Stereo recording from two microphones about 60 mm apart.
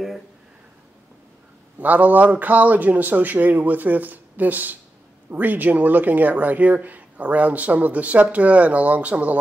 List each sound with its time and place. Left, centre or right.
1.8 s speech: right